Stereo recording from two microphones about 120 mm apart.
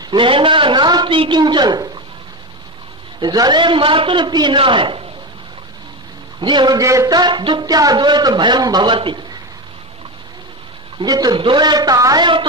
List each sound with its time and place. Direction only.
0.0 s a sound: 40° right (ahead or behind)
3.2 s a man's voice: 35° right (ahead or behind)
6.4 s a man's voice: 40° right (ahead or behind)
11.0 s a man's voice: 35° right (ahead or behind)